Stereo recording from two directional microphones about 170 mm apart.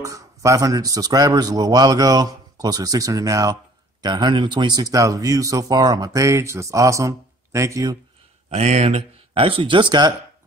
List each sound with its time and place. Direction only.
0.0 s speech: 20° right (ahead or behind)
8.5 s speech: 40° right (ahead or behind)